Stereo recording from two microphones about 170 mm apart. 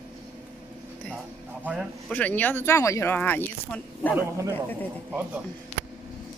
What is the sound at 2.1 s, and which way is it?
Speech, 10° left (ahead or behind).